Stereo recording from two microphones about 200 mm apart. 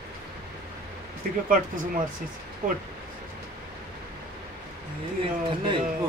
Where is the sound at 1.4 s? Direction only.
45° right (ahead or behind).